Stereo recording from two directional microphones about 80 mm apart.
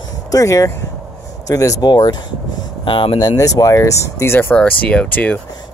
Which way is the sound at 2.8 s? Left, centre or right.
Left.